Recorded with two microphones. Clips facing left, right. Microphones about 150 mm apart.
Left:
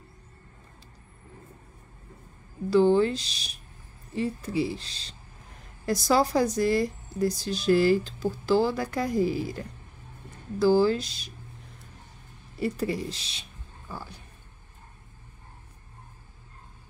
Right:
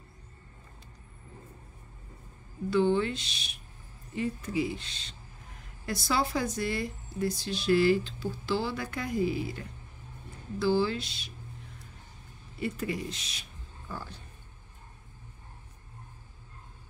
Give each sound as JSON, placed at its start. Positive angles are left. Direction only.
{"t": 2.7, "sound": "speech", "side_deg": 35}
{"t": 12.5, "sound": "speech", "side_deg": 35}
{"t": 13.8, "sound": "a sound", "side_deg": 10}